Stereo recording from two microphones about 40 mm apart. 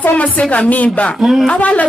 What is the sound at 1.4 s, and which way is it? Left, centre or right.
Speech, left.